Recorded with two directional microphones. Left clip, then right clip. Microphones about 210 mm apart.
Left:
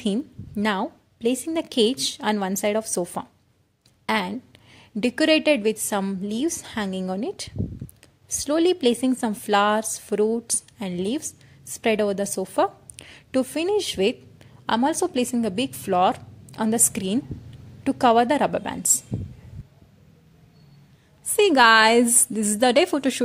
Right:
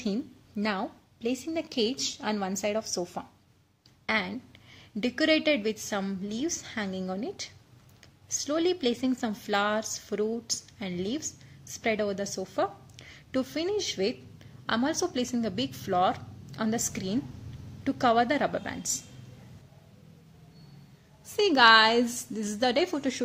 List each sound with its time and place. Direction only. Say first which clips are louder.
0.0 s a woman's voice: left 6 dB; 35° left (ahead or behind)
21.4 s a woman's voice: left 4 dB; 40° left (ahead or behind)